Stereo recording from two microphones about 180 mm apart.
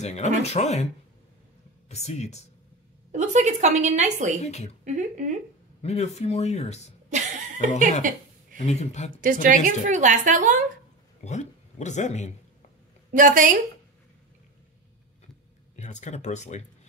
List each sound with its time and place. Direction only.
0.0 s speech: 40° left (ahead or behind)
1.9 s speech: 35° left (ahead or behind)
3.1 s a woman's voice: 40° right (ahead or behind)
4.4 s speech: 40° left (ahead or behind)
4.8 s a woman's voice: 40° right (ahead or behind)
5.8 s speech: 35° left (ahead or behind)
8.0 s a woman's voice: 45° right (ahead or behind)
8.6 s speech: 40° left (ahead or behind)
9.2 s a woman's voice: 50° right (ahead or behind)
11.2 s speech: 40° left (ahead or behind)
13.1 s a woman's voice: 50° right (ahead or behind)
15.7 s speech: 40° left (ahead or behind)